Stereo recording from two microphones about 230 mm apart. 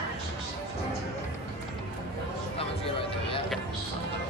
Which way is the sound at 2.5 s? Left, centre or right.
Left.